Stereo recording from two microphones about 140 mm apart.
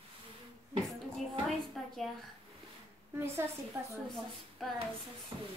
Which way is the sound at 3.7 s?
20° right (ahead or behind).